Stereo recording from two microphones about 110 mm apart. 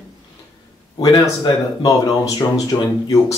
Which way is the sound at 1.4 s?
40° left (ahead or behind).